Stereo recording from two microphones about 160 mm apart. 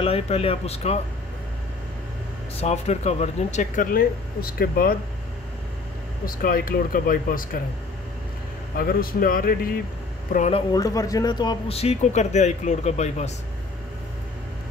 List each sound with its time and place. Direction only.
0.0 s a man's voice: 40° left (ahead or behind)
2.6 s speech: 45° left (ahead or behind); by 4.9 s 70° left (ahead or behind)
6.2 s speech: 65° left (ahead or behind)
8.7 s speech: 65° left (ahead or behind)
10.7 s a man's voice: 20° left (ahead or behind); by 13.3 s 45° left (ahead or behind)